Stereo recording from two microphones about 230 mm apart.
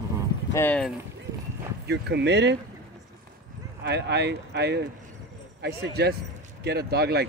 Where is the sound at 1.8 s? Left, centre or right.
Right.